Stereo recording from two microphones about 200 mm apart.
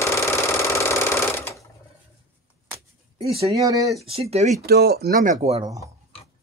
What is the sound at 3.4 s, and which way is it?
Speech, 15° right (ahead or behind).